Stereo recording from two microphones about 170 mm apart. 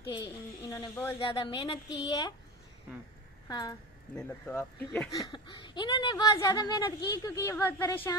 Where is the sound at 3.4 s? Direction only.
25° left (ahead or behind).